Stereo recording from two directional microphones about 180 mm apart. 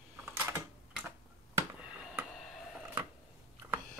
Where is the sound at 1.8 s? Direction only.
5° right (ahead or behind).